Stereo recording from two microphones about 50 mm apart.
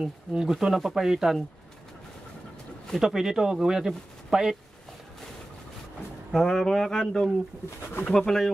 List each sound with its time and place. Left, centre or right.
0.0 s speech: centre
0.5 s speech: centre
3.0 s speech: centre
6.3 s speech: centre